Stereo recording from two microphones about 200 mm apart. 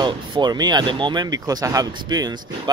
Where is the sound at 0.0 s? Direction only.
20° right (ahead or behind).